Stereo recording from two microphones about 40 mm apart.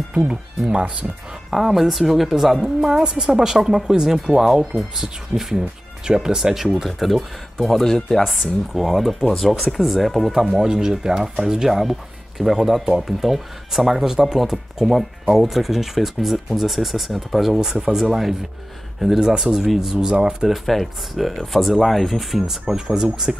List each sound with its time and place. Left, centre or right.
0.1 s speech: right
1.5 s speech: centre
8.3 s speech: centre
10.3 s speech: centre
19.1 s speech: centre
19.4 s speech: centre
20.0 s speech: right
20.4 s speech: centre